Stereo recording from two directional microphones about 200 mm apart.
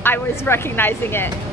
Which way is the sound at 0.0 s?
10° left (ahead or behind).